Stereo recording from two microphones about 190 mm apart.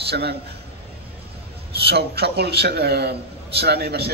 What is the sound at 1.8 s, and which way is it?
A man's voice, 60° right (ahead or behind).